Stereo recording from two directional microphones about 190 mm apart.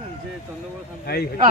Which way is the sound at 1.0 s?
55° left (ahead or behind).